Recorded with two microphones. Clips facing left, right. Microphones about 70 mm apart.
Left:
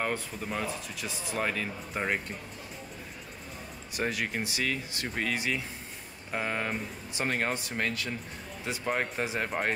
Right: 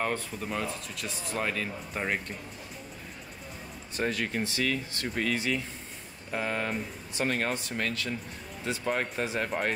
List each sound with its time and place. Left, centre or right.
0.0 s speech: centre
3.9 s speech: centre